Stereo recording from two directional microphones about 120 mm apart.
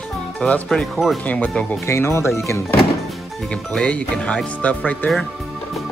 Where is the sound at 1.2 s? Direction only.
10° left (ahead or behind).